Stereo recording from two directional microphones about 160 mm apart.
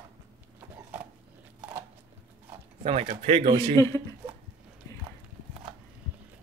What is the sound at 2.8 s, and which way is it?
Speech, 35° right (ahead or behind).